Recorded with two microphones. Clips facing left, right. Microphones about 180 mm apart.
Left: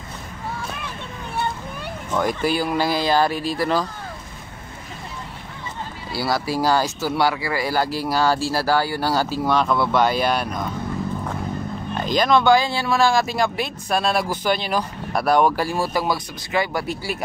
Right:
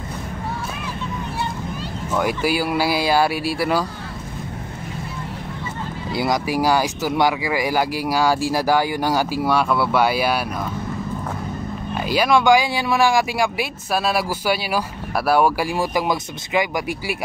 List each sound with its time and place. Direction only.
1.3 s vehicle: 60° left (ahead or behind)
2.1 s speech: 10° right (ahead or behind)
6.1 s speech: 20° right (ahead or behind)
11.9 s speech: 10° right (ahead or behind)